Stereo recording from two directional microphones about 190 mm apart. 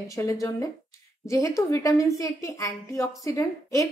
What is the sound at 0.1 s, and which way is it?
A woman's voice, 15° left (ahead or behind).